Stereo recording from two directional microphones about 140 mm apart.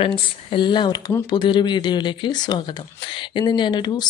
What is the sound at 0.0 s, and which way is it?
Speech, 40° left (ahead or behind).